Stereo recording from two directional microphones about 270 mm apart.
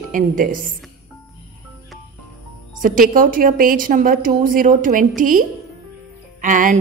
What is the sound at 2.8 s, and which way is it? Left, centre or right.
A woman's voice, right.